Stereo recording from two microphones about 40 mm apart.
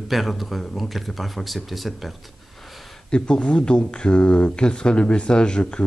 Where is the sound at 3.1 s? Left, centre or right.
Left.